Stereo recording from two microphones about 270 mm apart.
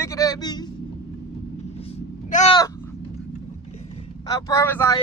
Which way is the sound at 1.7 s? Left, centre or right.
Left.